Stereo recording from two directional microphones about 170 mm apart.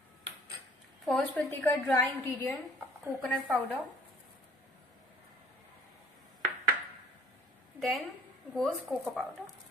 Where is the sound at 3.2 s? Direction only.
5° left (ahead or behind).